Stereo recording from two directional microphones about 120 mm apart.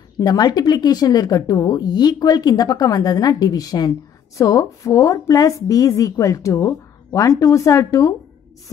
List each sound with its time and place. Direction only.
0.2 s a woman's voice: 35° left (ahead or behind)